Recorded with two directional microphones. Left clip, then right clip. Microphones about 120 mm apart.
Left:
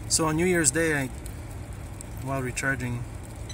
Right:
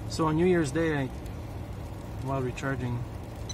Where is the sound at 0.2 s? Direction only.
30° left (ahead or behind).